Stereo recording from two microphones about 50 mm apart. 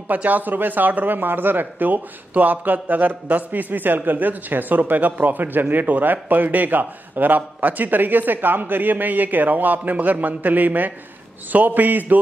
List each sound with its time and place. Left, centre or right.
0.1 s speech: right